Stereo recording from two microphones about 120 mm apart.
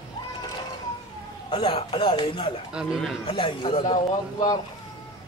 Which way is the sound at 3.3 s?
45° left (ahead or behind).